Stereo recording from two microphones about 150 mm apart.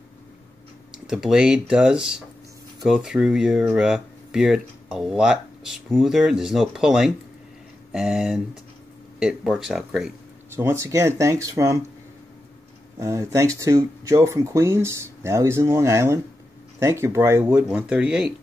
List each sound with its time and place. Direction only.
1.0 s speech: 5° right (ahead or behind)
10.5 s speech: 15° right (ahead or behind)
13.0 s speech: 20° right (ahead or behind)